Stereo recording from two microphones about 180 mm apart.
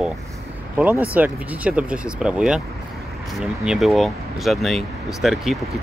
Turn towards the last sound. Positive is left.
turn(degrees=0)  # may be behind; listen again after turning